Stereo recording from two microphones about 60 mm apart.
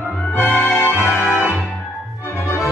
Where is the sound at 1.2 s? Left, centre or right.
Centre.